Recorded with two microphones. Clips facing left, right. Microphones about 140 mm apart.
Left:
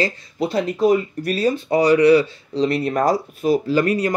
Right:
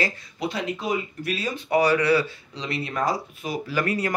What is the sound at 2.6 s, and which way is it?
Speech, 40° left (ahead or behind).